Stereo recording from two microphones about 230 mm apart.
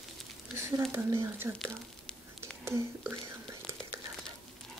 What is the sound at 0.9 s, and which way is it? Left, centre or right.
Speech, centre.